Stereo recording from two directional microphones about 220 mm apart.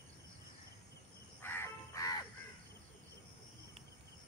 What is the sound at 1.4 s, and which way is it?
Crow, 10° left (ahead or behind).